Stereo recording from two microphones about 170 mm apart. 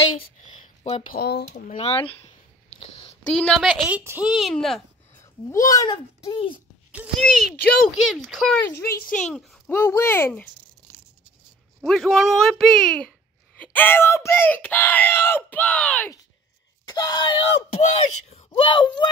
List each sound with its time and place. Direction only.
0.5 s a sound: 35° left (ahead or behind)
1.1 s speech: 65° left (ahead or behind)
1.8 s speech: 35° left (ahead or behind)
2.8 s a sound: 35° left (ahead or behind)
3.3 s speech: 5° left (ahead or behind)
3.8 s speech: 10° right (ahead or behind)
5.2 s speech: 20° left (ahead or behind)
6.2 s speech: 30° left (ahead or behind)
7.2 s speech: centre (ahead or behind)
9.7 s speech: 15° left (ahead or behind)
11.8 s speech: centre (ahead or behind)
16.8 s speech: 20° left (ahead or behind)